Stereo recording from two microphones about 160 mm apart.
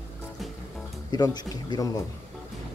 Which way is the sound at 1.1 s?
25° left (ahead or behind).